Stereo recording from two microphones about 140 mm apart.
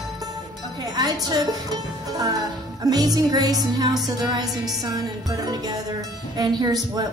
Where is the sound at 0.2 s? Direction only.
30° right (ahead or behind).